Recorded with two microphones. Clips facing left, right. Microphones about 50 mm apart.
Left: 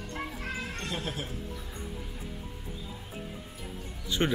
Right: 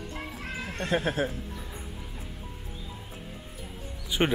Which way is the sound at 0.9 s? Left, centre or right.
Right.